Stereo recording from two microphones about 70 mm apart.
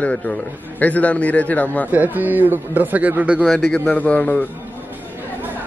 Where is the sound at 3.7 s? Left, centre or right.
Centre.